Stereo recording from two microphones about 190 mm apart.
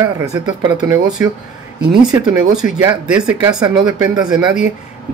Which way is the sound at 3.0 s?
5° right (ahead or behind).